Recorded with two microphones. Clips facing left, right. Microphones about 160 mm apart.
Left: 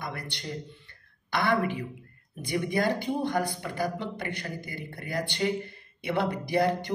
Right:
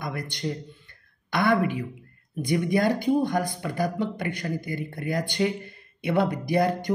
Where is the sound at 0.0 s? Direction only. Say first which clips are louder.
Right 4 dB; 45° right (ahead or behind).